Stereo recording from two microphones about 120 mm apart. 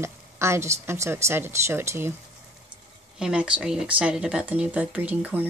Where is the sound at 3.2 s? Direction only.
10° right (ahead or behind).